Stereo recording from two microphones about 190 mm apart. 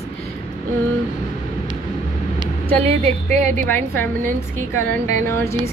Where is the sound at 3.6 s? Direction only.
10° left (ahead or behind).